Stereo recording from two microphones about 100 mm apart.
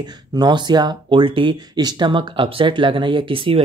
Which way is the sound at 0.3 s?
45° right (ahead or behind).